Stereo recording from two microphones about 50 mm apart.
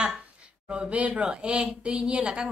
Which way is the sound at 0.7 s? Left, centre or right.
Right.